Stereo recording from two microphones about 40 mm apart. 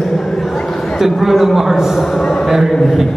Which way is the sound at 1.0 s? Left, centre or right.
Centre.